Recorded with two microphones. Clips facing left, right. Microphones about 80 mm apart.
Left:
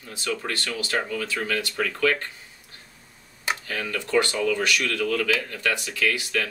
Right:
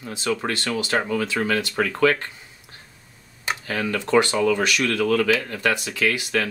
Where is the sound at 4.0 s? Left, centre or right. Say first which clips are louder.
Right 4 dB; centre.